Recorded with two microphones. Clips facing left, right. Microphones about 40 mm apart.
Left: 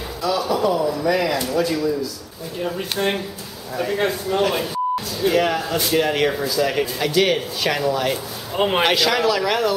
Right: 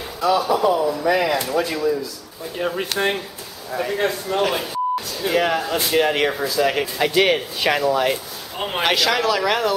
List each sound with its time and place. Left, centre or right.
0.2 s speech: centre
3.7 s speech: centre
8.5 s a man's voice: centre
8.8 s speech: centre